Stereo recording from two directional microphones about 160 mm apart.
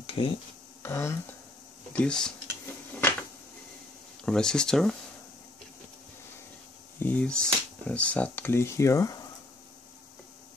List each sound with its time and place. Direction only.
0.0 s a sound: 35° left (ahead or behind)
0.8 s speech: 15° left (ahead or behind)
2.0 s speech: 5° left (ahead or behind)
4.3 s speech: 5° left (ahead or behind)
7.0 s speech: 10° left (ahead or behind)